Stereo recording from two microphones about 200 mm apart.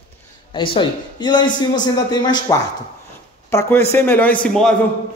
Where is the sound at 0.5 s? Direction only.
25° left (ahead or behind).